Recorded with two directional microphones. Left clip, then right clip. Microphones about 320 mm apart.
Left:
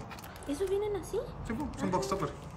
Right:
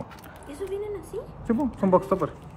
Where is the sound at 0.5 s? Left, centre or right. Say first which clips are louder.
Even; left.